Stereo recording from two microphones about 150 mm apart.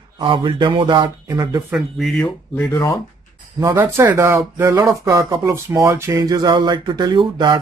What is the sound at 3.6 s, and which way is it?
A man's voice, 15° right (ahead or behind).